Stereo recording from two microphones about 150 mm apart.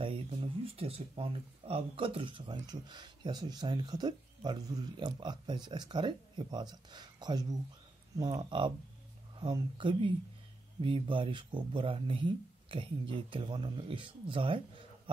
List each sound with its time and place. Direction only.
0.0 s speech: 35° right (ahead or behind)